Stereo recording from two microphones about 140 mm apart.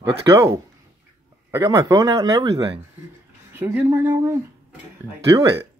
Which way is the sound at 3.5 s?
10° right (ahead or behind).